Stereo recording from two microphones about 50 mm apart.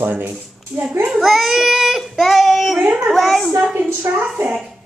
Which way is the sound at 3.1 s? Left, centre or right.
Centre.